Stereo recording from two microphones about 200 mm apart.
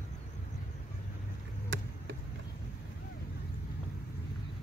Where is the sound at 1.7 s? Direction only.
75° right (ahead or behind).